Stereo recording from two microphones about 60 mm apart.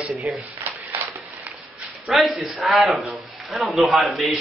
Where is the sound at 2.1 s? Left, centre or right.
Centre.